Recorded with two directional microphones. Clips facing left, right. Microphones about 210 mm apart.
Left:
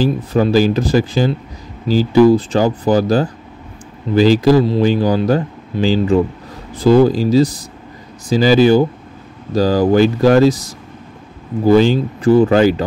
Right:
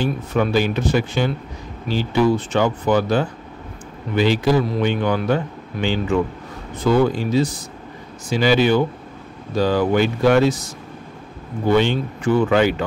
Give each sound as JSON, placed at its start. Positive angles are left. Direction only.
{"t": 0.0, "sound": "a man's voice", "side_deg": 35}